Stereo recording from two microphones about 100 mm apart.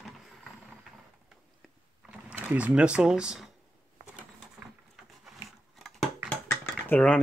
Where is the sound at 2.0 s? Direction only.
10° right (ahead or behind).